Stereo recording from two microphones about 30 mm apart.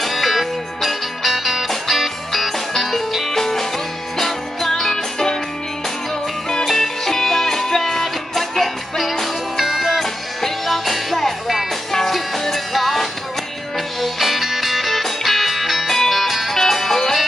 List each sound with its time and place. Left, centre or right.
0.0 s music: centre
3.3 s music: centre
4.9 s music: centre
6.6 s music: centre
10.0 s music: centre
15.9 s music: centre